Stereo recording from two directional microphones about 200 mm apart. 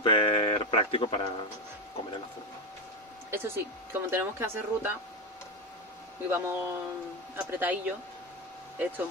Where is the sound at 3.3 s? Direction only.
10° right (ahead or behind).